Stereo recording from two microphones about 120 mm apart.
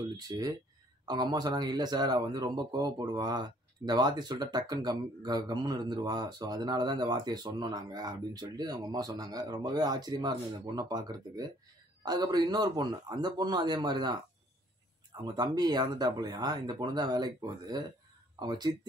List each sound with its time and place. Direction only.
0.3 s speech: 35° right (ahead or behind)
15.2 s speech: 35° right (ahead or behind)